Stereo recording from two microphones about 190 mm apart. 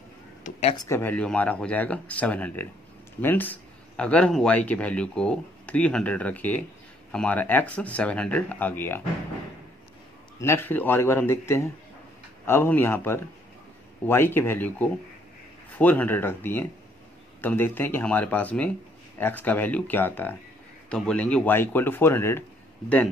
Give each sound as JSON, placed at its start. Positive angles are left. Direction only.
{"t": 0.4, "sound": "a sound", "side_deg": 35}
{"t": 0.7, "sound": "speech", "side_deg": 15}
{"t": 10.4, "sound": "speech", "side_deg": 10}